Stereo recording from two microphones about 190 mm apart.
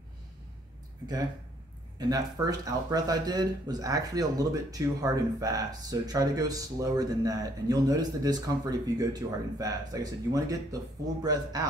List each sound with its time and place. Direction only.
2.0 s speech: 20° right (ahead or behind)